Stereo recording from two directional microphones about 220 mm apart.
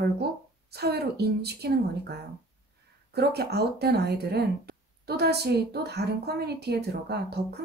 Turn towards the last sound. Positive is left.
turn(degrees=-45)  # may be behind; listen again after turning